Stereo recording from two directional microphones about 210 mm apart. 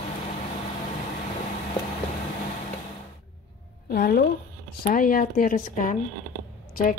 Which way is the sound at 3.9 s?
45° left (ahead or behind).